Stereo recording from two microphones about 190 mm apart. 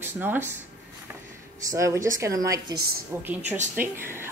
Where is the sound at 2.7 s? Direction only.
55° right (ahead or behind).